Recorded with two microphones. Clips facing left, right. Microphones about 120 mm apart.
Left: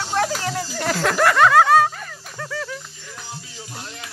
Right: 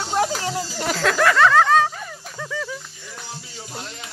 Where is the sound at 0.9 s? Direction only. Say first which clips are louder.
Even; 10° left (ahead or behind).